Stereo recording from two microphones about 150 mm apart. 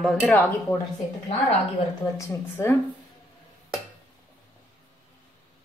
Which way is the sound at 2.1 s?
15° left (ahead or behind).